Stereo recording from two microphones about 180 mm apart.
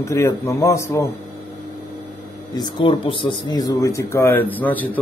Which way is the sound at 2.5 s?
25° left (ahead or behind).